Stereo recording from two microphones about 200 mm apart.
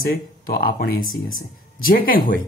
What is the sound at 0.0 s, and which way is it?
Speech, 45° left (ahead or behind).